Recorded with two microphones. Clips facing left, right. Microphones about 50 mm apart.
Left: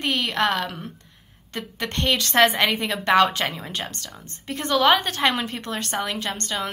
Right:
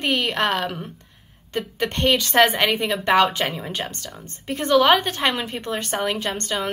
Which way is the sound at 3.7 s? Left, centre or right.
Centre.